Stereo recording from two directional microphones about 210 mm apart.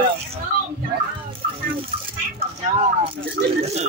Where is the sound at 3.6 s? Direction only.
30° right (ahead or behind).